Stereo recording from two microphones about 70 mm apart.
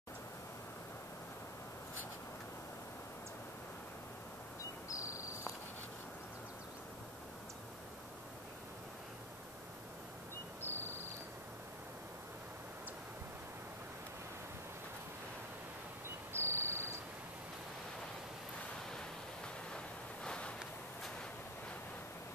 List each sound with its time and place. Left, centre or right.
4.8 s cricket: left
10.6 s cricket: left
16.3 s cricket: right
18.9 s waves: centre
20.2 s a sound: centre